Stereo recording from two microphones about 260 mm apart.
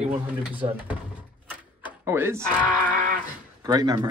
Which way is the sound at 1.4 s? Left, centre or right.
Centre.